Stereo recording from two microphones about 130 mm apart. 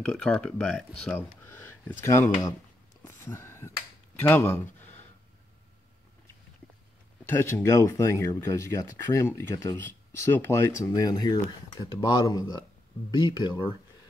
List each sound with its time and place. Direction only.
0.0 s speech: 10° left (ahead or behind)
1.1 s speech: 15° left (ahead or behind)
3.0 s a sound: 20° left (ahead or behind)
4.2 s speech: 15° left (ahead or behind)
7.2 s speech: 20° left (ahead or behind); by 13.7 s 35° left (ahead or behind)